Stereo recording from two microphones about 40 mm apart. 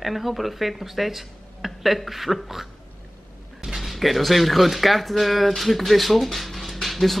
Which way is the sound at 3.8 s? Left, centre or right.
Centre.